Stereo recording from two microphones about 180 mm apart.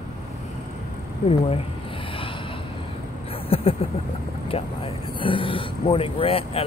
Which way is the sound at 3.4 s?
30° left (ahead or behind).